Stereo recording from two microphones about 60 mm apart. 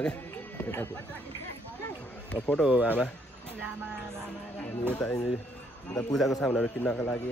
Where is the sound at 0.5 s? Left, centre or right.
Left.